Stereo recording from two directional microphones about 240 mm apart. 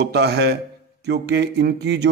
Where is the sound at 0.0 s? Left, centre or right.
Right.